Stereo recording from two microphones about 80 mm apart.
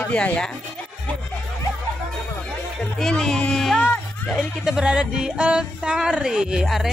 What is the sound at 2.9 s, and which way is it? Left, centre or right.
Speech, centre.